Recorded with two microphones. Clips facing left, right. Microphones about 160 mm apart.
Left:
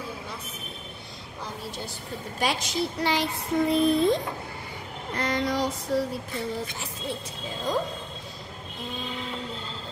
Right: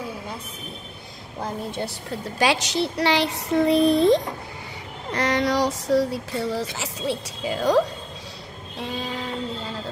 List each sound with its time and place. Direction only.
2.3 s speech: 80° right